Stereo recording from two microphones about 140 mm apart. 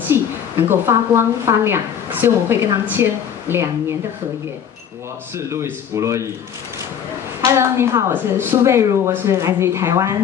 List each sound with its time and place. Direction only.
0.1 s a woman's voice: 15° right (ahead or behind)
5.5 s speech: 20° right (ahead or behind)
7.4 s speech: 20° right (ahead or behind)